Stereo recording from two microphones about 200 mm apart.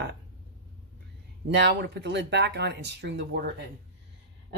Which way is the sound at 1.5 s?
55° right (ahead or behind).